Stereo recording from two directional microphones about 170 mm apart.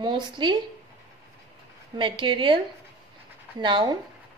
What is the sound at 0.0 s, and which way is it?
Speech, 25° right (ahead or behind).